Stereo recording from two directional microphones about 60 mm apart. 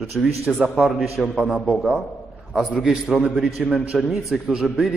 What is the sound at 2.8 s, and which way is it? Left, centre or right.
A man's voice, centre.